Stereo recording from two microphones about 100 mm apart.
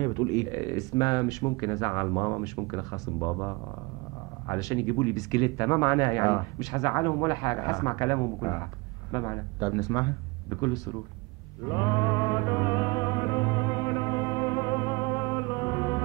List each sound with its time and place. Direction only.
0.0 s a man's voice: 40° left (ahead or behind)
4.5 s a man's voice: 35° left (ahead or behind)
11.6 s music: 40° left (ahead or behind)